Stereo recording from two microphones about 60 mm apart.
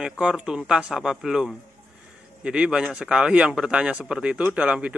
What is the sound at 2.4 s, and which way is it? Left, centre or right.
Speech, centre.